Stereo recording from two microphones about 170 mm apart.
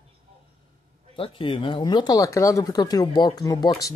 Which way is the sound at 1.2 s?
30° left (ahead or behind).